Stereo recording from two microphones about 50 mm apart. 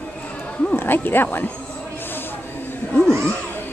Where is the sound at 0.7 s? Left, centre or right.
Left.